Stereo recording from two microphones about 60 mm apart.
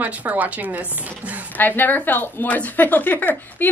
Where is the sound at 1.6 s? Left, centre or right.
Left.